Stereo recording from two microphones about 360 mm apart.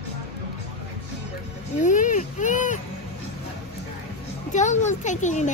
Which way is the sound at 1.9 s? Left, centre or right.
Left.